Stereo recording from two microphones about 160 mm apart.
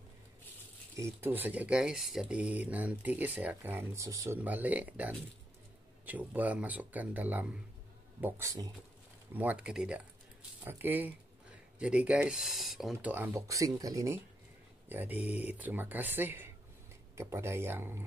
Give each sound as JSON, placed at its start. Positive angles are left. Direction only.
{"t": 0.9, "sound": "speech", "side_deg": -15}
{"t": 13.1, "sound": "speech", "side_deg": -15}